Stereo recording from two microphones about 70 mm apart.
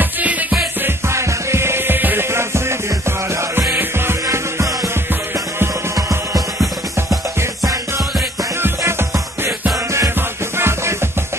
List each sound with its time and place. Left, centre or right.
0.0 s music: right
0.8 s music: right
5.9 s music: right
8.5 s music: right